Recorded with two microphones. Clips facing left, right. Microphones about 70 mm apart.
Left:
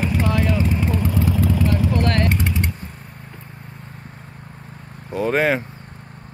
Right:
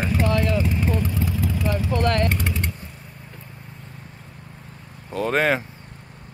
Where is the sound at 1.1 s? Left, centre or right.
Left.